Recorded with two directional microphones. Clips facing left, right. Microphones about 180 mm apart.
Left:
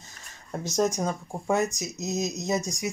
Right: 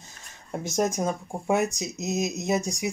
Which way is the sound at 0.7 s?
15° right (ahead or behind).